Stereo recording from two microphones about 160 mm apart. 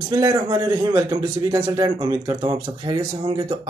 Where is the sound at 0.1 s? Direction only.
25° right (ahead or behind).